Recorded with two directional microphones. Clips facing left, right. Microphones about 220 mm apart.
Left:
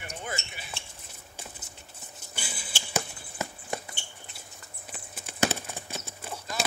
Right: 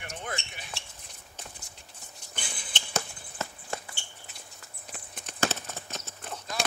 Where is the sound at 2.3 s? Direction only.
5° left (ahead or behind).